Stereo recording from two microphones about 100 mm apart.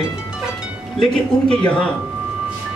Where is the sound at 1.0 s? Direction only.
10° left (ahead or behind).